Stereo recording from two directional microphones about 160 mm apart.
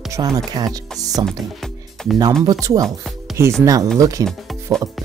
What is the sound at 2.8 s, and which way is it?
Speech, centre (ahead or behind).